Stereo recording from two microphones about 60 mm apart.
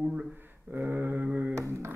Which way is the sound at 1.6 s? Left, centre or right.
Right.